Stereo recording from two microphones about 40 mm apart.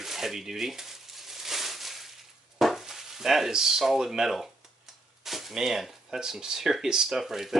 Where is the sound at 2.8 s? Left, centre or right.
Centre.